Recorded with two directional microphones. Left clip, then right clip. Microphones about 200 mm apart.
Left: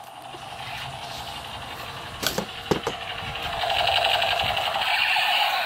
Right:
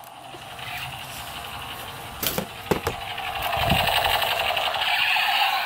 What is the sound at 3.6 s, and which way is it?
Sewing machine, 35° right (ahead or behind).